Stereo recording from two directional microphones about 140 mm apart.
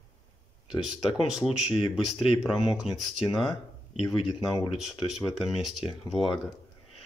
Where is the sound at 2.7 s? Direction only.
Centre (ahead or behind).